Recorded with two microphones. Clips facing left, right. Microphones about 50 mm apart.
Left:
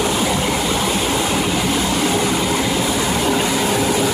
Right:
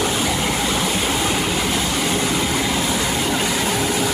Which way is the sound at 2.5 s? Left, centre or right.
Centre.